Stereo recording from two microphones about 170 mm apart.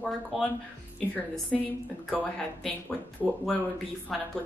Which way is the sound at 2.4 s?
5° left (ahead or behind).